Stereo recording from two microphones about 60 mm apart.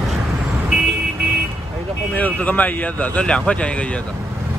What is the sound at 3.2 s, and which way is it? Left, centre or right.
Speech, centre.